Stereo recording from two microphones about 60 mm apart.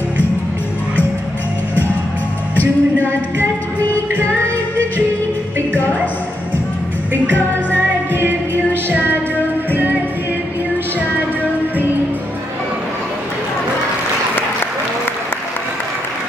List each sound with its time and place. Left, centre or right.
2.5 s music: left
7.2 s music: right
9.7 s music: right